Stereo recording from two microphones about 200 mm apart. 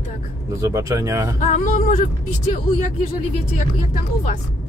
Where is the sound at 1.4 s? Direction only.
40° left (ahead or behind).